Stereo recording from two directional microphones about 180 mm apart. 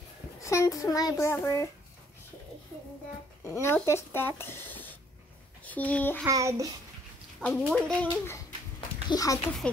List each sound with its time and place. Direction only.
0.4 s a child's voice: 15° left (ahead or behind)
3.4 s a child's voice: 15° left (ahead or behind)
6.2 s child singing: 15° right (ahead or behind)
7.3 s a child's voice: 5° left (ahead or behind)
9.1 s a child's voice: 20° left (ahead or behind)